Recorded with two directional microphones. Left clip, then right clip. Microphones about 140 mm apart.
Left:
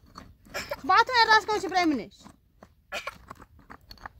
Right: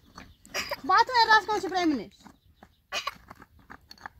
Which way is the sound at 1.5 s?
40° left (ahead or behind).